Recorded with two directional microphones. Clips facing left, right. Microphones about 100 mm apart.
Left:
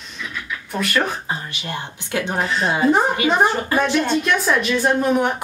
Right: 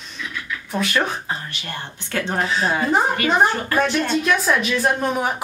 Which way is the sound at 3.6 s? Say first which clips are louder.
Left 1 dB; 15° left (ahead or behind).